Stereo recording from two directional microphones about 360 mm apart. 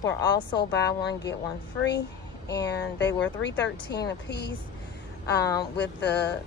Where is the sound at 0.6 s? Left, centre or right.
Left.